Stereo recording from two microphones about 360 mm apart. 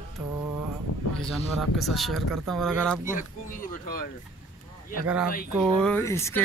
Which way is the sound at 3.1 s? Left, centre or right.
Left.